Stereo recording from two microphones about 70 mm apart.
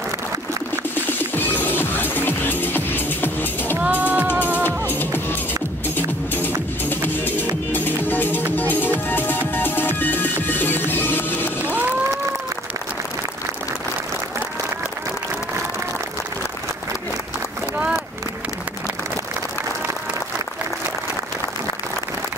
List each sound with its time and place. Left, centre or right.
1.1 s music: left
3.7 s music: right
4.6 s music: left